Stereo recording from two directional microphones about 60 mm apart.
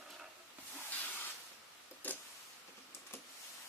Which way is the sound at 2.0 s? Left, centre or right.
Left.